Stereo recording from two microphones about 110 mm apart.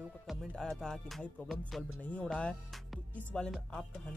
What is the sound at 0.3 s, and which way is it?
Music, centre (ahead or behind).